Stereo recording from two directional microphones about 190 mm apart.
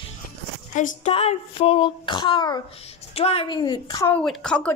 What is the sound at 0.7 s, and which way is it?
A child's voice, 40° left (ahead or behind).